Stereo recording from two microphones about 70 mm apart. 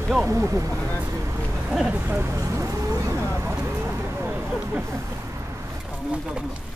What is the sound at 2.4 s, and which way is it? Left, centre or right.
Vehicle, right.